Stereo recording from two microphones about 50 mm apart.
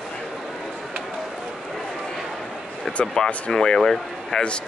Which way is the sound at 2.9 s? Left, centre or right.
Centre.